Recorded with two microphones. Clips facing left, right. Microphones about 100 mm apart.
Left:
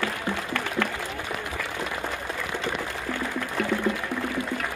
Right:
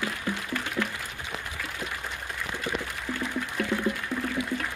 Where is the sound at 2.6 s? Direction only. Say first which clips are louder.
Left 3 dB; 75° left (ahead or behind).